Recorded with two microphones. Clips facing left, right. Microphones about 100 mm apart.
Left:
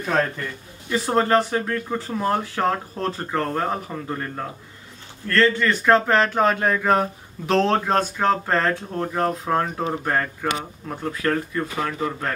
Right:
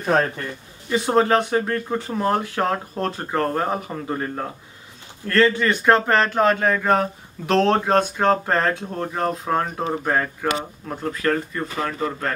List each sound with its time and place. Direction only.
0.0 s a man's voice: 25° right (ahead or behind)
0.8 s speech: 5° right (ahead or behind)